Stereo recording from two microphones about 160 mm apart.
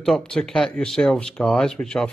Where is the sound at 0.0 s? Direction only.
5° left (ahead or behind).